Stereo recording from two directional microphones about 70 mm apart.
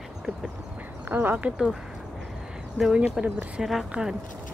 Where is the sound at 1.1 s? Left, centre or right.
Right.